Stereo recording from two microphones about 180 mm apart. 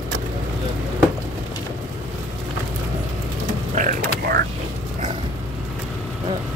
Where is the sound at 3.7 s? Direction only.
55° right (ahead or behind).